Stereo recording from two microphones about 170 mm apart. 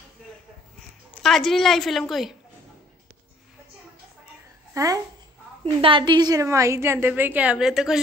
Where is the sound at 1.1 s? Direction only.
5° left (ahead or behind).